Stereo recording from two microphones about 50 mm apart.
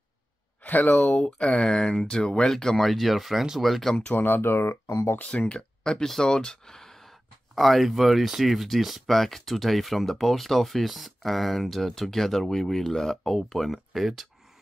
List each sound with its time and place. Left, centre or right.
0.7 s speech: left
1.1 s speech: centre
2.9 s speech: centre
4.1 s speech: left
4.8 s speech: left
5.2 s speech: left; by 14.2 s centre